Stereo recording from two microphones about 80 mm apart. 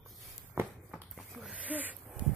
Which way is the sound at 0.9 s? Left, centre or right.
Centre.